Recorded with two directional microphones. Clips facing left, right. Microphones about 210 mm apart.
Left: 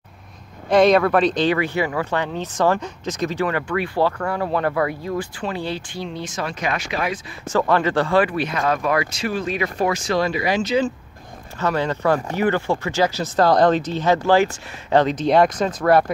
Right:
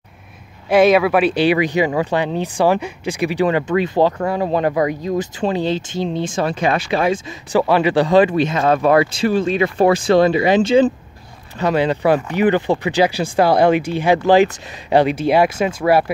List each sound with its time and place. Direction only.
0.7 s speech: 5° right (ahead or behind); by 7.2 s 30° right (ahead or behind)
7.5 s speech: 10° right (ahead or behind)
11.6 s speech: 15° right (ahead or behind)